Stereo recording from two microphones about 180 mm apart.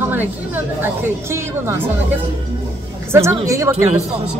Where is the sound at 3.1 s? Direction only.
15° right (ahead or behind).